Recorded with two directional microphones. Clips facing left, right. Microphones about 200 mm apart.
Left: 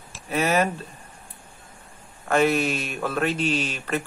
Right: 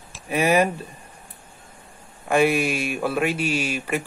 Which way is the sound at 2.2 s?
10° right (ahead or behind).